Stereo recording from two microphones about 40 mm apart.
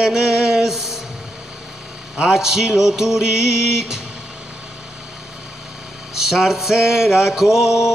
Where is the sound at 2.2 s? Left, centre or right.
Centre.